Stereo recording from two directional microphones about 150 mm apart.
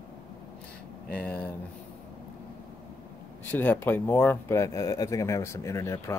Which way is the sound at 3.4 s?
15° left (ahead or behind).